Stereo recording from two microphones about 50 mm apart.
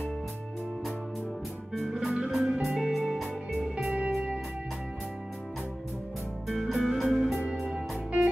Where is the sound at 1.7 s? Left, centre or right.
Centre.